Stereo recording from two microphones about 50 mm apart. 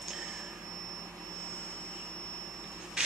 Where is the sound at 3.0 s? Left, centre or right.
Centre.